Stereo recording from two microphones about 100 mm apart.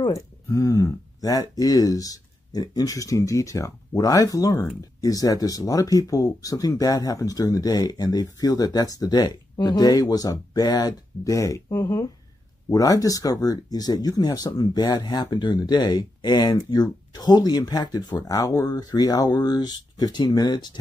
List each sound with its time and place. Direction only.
0.1 s speech: 30° left (ahead or behind)